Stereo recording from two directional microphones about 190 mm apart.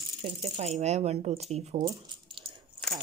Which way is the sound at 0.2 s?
35° right (ahead or behind).